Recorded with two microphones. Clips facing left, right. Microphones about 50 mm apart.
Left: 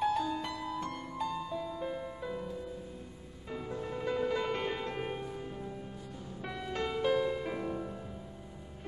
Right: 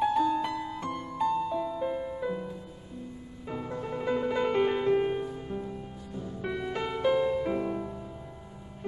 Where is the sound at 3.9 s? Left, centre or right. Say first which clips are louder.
Right 4 dB; centre.